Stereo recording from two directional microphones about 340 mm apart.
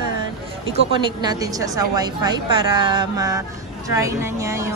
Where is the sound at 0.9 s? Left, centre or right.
Centre.